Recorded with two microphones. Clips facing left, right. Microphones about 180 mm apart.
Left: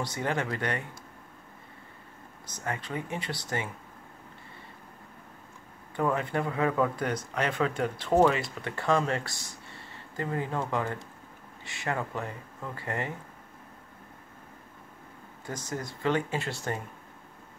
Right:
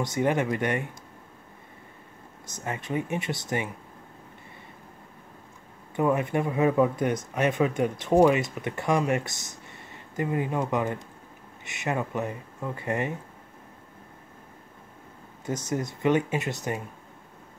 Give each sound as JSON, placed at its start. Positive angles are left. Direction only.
{"t": 0.0, "sound": "speech", "side_deg": -20}
{"t": 2.5, "sound": "speech", "side_deg": -20}
{"t": 5.9, "sound": "speech", "side_deg": -20}
{"t": 15.4, "sound": "speech", "side_deg": -20}